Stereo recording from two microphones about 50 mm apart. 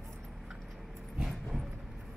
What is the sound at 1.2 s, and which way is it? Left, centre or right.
Vehicle, centre.